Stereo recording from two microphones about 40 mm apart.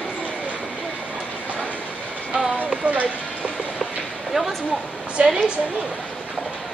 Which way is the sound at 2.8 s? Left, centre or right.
Right.